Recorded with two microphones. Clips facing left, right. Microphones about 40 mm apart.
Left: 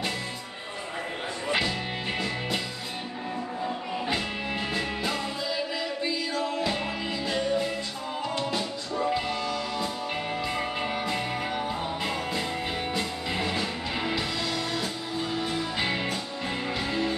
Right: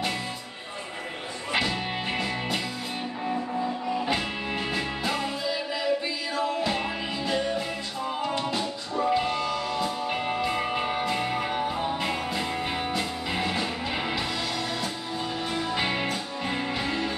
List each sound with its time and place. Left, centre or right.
1.5 s music: centre
4.0 s music: centre